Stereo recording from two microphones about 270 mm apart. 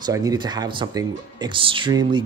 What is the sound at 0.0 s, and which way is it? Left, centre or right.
Speech, centre.